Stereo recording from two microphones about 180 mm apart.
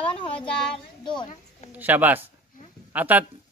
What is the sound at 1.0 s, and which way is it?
Speech, 25° left (ahead or behind).